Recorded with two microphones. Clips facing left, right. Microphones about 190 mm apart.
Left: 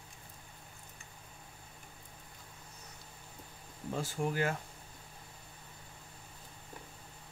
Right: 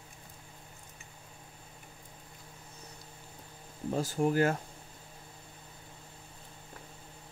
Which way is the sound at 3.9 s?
40° right (ahead or behind).